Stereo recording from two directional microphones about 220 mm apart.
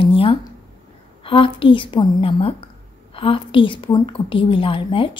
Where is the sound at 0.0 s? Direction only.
25° left (ahead or behind).